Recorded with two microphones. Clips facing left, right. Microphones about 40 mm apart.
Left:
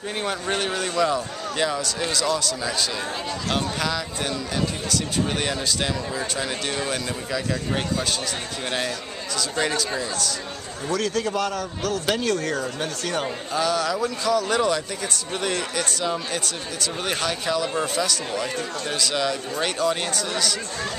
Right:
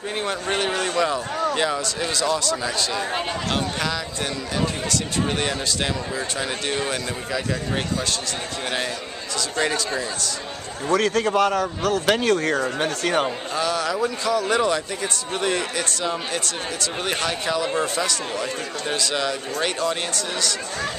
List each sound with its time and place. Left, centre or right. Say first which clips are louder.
0.2 s speech: right 1 dB; centre
9.6 s speech: right 2 dB; centre
10.9 s speech: right 4 dB; right
13.6 s speech: even; centre